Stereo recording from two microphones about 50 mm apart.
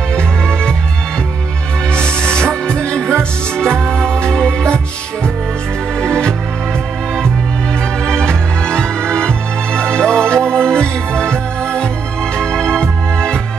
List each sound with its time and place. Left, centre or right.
0.1 s music: centre
2.1 s music: centre
5.9 s music: centre
8.0 s music: centre